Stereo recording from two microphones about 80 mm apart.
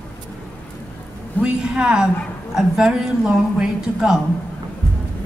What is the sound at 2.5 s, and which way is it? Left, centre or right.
Speech, centre.